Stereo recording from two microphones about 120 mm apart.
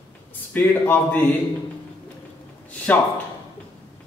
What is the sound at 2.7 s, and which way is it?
Speech, 10° left (ahead or behind).